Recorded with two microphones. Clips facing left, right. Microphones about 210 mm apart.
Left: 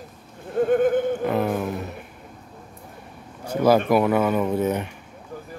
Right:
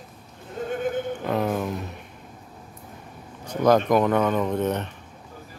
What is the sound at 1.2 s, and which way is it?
Speech, centre (ahead or behind).